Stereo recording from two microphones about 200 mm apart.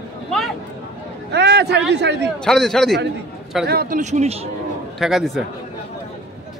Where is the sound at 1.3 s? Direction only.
60° right (ahead or behind).